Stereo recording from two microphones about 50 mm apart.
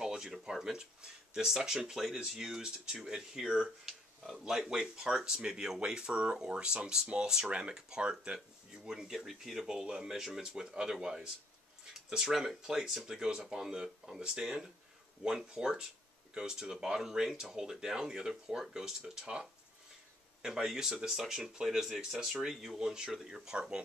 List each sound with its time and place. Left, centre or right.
0.0 s speech: centre
3.8 s a sound: centre
4.4 s speech: centre
20.4 s speech: centre